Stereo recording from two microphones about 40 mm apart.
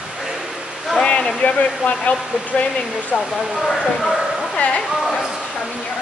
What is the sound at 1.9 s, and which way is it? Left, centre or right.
Speech, left.